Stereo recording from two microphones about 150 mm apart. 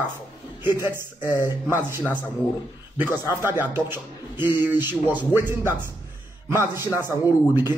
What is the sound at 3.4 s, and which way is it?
A man's voice, 15° right (ahead or behind).